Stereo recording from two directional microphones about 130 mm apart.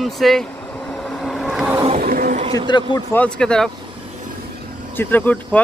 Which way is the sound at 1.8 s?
80° right.